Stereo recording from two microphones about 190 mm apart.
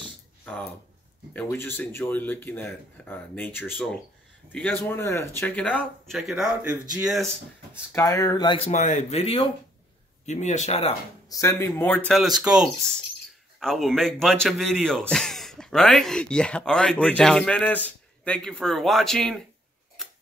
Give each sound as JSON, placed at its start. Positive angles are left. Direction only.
{"t": 0.0, "sound": "a sound", "side_deg": 5}
{"t": 1.3, "sound": "speech", "side_deg": 10}
{"t": 7.9, "sound": "speech", "side_deg": 15}
{"t": 11.2, "sound": "speech", "side_deg": 15}